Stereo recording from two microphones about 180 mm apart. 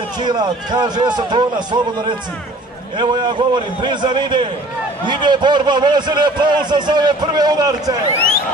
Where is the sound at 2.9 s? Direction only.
25° right (ahead or behind).